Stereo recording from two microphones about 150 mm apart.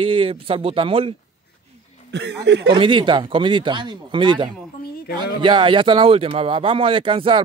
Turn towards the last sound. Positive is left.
turn(degrees=-35)  # may be behind; listen again after turning